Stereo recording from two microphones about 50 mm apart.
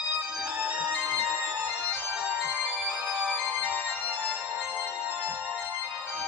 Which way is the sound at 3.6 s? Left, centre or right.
Right.